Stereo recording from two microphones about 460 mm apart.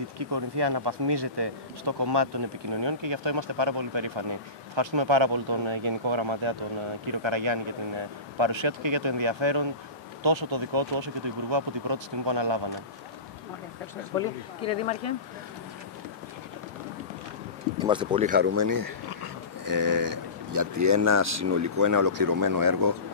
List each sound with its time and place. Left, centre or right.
0.2 s speech: right
7.1 s speech: right
14.1 s speech: centre
17.7 s speech: centre
18.6 s speech: right